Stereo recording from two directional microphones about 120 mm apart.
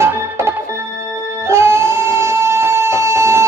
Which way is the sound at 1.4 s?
20° right (ahead or behind).